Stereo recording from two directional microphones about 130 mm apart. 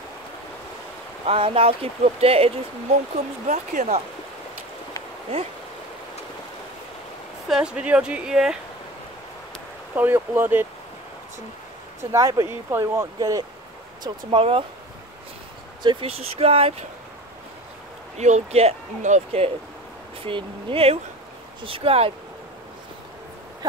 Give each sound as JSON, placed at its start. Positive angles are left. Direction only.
{"t": 1.2, "sound": "speech", "side_deg": -45}
{"t": 3.4, "sound": "speech", "side_deg": -65}
{"t": 7.4, "sound": "speech", "side_deg": -5}
{"t": 9.9, "sound": "speech", "side_deg": -15}
{"t": 12.0, "sound": "speech", "side_deg": -25}
{"t": 14.0, "sound": "speech", "side_deg": -45}
{"t": 15.8, "sound": "speech", "side_deg": -40}
{"t": 18.1, "sound": "speech", "side_deg": -60}
{"t": 20.2, "sound": "speech", "side_deg": -45}
{"t": 23.6, "sound": "a sound", "side_deg": -30}